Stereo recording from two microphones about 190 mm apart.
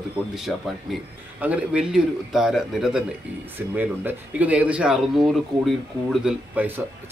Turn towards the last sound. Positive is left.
turn(degrees=-10)  # may be behind; listen again after turning